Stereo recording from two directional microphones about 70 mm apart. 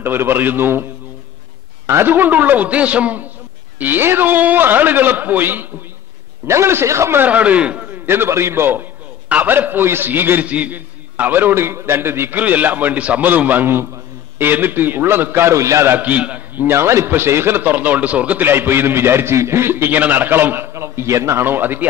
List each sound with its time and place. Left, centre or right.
0.0 s a man's voice: right
1.9 s a man's voice: right
7.2 s a man's voice: right
15.5 s a man's voice: right
16.0 s a man's voice: right